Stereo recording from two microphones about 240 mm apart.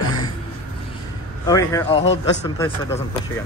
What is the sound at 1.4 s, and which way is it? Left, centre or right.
A man's voice, centre.